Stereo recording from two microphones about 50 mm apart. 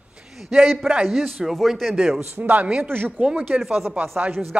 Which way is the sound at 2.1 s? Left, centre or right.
Right.